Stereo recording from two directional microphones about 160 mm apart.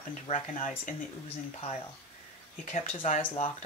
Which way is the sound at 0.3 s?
55° left (ahead or behind).